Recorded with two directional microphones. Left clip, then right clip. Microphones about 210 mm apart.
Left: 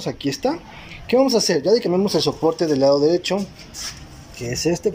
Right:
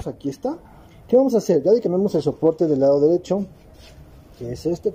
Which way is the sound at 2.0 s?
20° right (ahead or behind).